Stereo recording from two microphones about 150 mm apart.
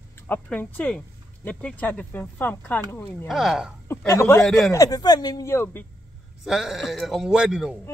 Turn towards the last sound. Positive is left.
turn(degrees=-5)  # may be behind; listen again after turning